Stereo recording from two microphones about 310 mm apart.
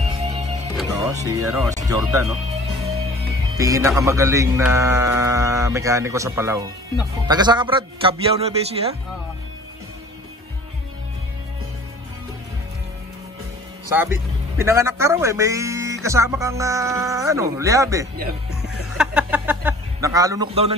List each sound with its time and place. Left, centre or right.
0.0 s music: centre
0.7 s speech: centre
3.5 s speech: centre
14.6 s speech: centre
18.5 s a sound: centre